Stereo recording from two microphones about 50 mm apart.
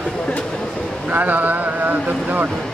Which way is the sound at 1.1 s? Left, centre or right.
Right.